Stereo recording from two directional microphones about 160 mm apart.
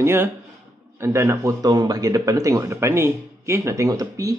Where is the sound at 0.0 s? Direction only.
15° right (ahead or behind).